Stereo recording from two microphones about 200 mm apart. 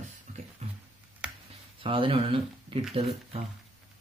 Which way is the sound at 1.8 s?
25° right (ahead or behind).